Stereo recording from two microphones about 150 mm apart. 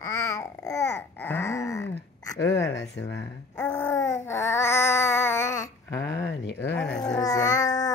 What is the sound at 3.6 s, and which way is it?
Speech, 15° left (ahead or behind).